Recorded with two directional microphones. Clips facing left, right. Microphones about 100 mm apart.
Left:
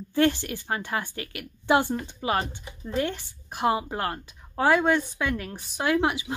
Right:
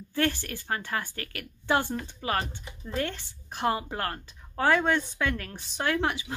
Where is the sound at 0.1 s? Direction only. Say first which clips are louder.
Left 5 dB; 20° left (ahead or behind).